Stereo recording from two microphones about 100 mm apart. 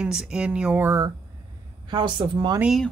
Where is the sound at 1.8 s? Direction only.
50° right (ahead or behind).